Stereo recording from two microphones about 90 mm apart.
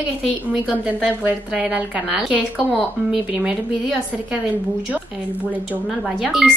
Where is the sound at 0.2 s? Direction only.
10° right (ahead or behind).